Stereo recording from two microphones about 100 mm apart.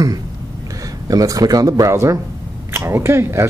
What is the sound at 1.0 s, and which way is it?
Speech, 35° right (ahead or behind).